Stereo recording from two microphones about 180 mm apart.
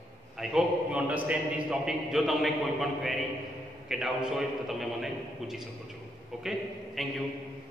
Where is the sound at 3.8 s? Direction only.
5° right (ahead or behind).